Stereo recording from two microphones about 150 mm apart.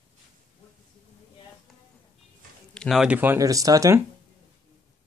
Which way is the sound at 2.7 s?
5° left (ahead or behind).